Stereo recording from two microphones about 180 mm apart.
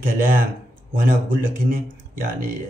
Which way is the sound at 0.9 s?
50° right (ahead or behind).